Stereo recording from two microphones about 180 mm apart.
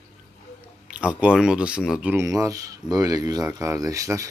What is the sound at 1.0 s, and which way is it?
A man's voice, 5° right (ahead or behind).